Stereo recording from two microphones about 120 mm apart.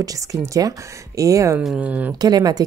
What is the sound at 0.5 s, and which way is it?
Speech, 30° right (ahead or behind).